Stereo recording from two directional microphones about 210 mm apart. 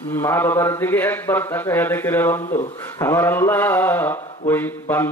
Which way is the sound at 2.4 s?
35° left (ahead or behind).